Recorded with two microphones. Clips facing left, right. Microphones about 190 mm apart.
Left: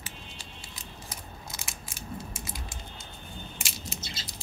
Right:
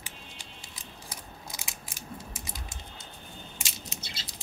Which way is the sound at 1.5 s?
15° right (ahead or behind).